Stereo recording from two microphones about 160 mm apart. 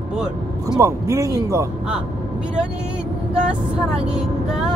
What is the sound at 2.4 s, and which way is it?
A woman's voice, 5° right (ahead or behind).